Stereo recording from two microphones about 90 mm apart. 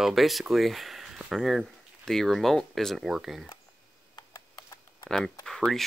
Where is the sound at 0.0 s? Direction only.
Centre (ahead or behind).